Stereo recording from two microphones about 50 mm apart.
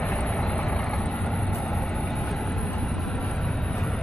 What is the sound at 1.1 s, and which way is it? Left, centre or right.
Vehicle, centre.